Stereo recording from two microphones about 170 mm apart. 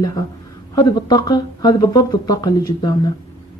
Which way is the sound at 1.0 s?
25° left (ahead or behind).